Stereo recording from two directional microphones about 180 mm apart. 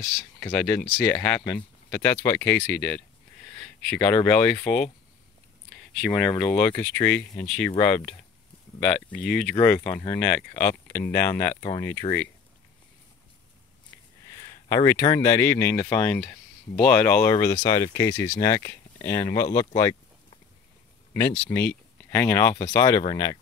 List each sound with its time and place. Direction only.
0.0 s speech: 5° left (ahead or behind)
5.9 s speech: 5° left (ahead or behind)
9.3 s speech: centre (ahead or behind)
14.4 s speech: 20° left (ahead or behind)
21.1 s speech: 15° left (ahead or behind)